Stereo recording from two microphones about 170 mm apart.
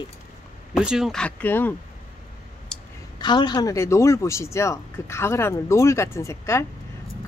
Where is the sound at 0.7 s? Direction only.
5° right (ahead or behind).